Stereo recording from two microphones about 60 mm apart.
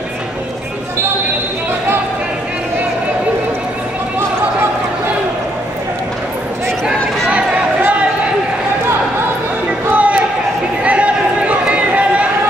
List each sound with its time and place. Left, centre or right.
7.2 s a sound: right
9.8 s basketball bounce: right
10.8 s run: right